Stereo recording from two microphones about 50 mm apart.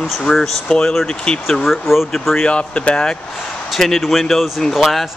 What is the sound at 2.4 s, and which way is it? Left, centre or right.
Speech, left.